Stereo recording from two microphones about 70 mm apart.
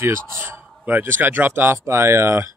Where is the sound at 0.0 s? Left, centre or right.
Right.